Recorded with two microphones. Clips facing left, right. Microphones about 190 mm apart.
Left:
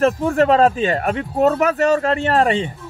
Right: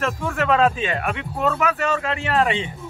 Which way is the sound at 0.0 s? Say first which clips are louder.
Left 8 dB; 35° left (ahead or behind).